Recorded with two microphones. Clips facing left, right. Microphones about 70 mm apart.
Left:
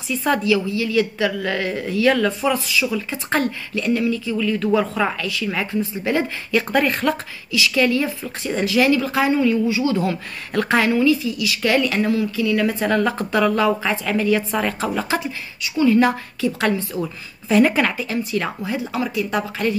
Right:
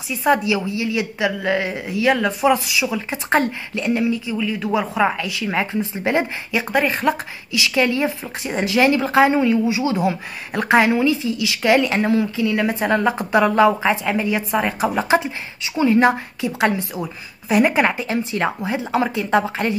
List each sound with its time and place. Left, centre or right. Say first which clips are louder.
0.1 s speech: right 1 dB; centre
6.5 s speech: left 1 dB; centre
7.5 s speech: left 1 dB; right